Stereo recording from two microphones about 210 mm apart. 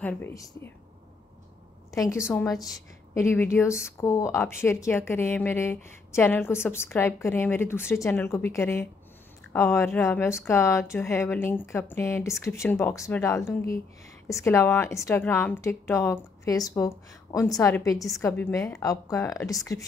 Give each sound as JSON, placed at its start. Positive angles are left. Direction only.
{"t": 0.0, "sound": "speech", "side_deg": 10}
{"t": 1.9, "sound": "a woman's voice", "side_deg": 15}